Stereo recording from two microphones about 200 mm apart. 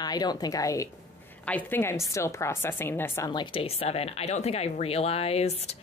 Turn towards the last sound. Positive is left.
turn(degrees=30)  # may be behind; listen again after turning